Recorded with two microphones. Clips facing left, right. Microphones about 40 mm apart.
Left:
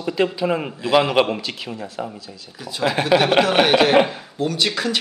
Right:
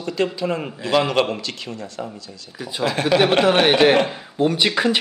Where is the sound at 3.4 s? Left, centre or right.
Centre.